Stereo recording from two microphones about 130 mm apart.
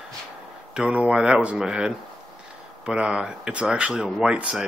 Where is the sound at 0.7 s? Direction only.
10° right (ahead or behind).